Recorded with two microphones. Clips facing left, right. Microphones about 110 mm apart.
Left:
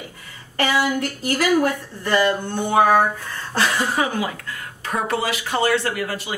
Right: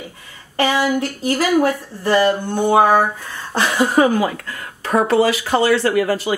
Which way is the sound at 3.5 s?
15° right (ahead or behind).